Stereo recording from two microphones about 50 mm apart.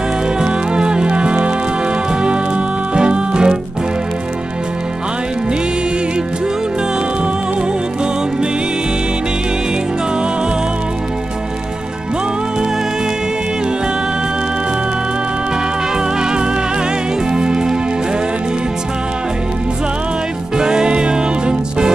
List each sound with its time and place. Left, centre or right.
0.4 s music: centre
17.4 s music: centre
20.5 s music: centre